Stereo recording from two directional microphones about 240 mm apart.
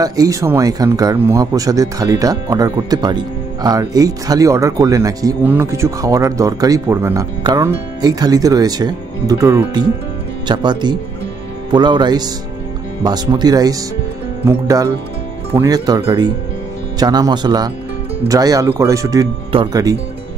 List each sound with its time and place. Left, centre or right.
0.0 s speech: centre